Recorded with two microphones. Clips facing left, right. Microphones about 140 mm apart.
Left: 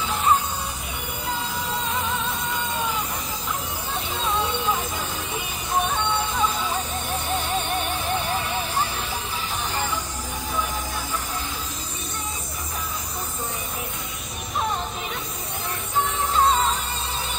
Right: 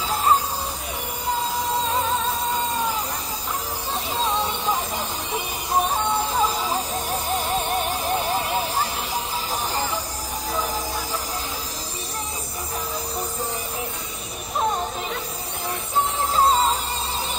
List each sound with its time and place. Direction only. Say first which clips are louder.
0.1 s music: right 1 dB; 35° right (ahead or behind)
1.9 s music: right 3 dB; 35° right (ahead or behind)
4.2 s vehicle: even; 35° right (ahead or behind)
5.7 s music: right 2 dB; 35° right (ahead or behind)
16.3 s music: right 1 dB; 30° right (ahead or behind)